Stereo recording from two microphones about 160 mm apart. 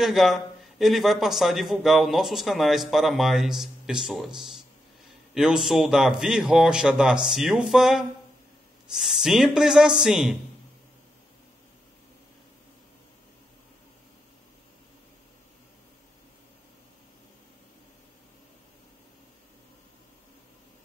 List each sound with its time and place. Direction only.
0.0 s a man's voice: centre (ahead or behind)